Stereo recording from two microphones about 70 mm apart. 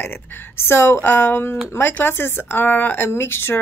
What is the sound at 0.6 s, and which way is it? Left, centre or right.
Speech, left.